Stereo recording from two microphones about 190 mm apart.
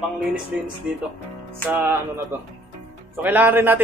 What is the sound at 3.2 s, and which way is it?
Speech, 10° right (ahead or behind).